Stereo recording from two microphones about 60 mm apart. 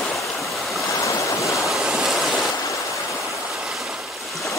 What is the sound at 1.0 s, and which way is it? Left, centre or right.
Stream, left.